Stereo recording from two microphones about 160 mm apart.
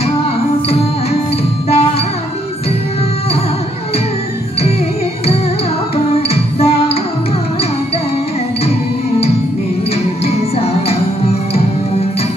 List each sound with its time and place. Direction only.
1.7 s music: 40° left (ahead or behind)
6.2 s music: 40° left (ahead or behind)
10.2 s music: 40° left (ahead or behind)